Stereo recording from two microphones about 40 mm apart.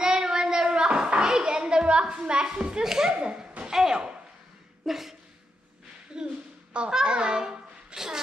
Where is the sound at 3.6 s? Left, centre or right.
Centre.